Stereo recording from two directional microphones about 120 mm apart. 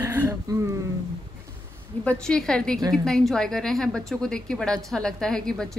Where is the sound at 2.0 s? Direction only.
5° left (ahead or behind).